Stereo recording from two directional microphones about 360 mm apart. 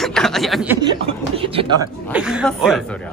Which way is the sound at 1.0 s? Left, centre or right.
Centre.